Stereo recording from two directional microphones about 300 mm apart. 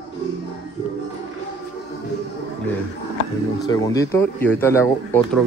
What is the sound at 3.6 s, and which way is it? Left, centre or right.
Speech, centre.